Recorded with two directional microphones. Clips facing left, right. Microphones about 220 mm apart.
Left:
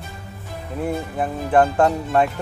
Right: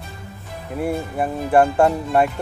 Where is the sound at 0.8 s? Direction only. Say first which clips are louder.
Right 1 dB; 10° right (ahead or behind).